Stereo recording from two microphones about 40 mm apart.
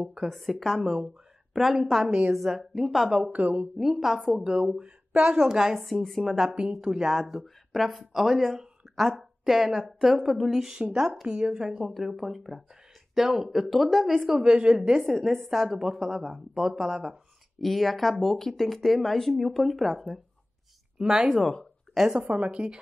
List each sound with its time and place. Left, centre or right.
0.3 s speech: centre
3.3 s speech: right
3.7 s a woman's voice: centre
5.8 s speech: centre
6.7 s speech: centre
10.8 s a woman's voice: right; by 14.4 s centre
14.4 s a woman's voice: right
15.0 s speech: centre
17.6 s speech: centre
21.0 s a woman's voice: centre